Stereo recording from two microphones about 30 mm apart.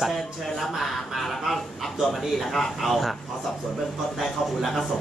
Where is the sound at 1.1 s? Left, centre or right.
Centre.